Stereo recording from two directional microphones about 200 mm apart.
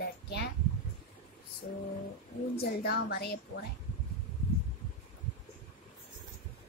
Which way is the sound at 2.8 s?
55° left (ahead or behind).